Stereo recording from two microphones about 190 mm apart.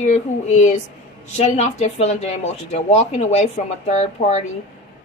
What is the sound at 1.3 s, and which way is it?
Speech, 35° left (ahead or behind).